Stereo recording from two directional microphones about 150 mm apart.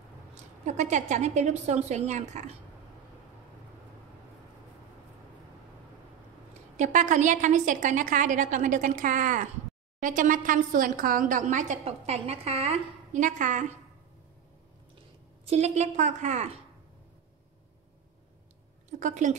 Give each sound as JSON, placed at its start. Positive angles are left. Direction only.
{"t": 0.3, "sound": "a woman's voice", "side_deg": -50}
{"t": 6.8, "sound": "a woman's voice", "side_deg": -55}
{"t": 15.4, "sound": "a woman's voice", "side_deg": -45}
{"t": 18.9, "sound": "a woman's voice", "side_deg": -55}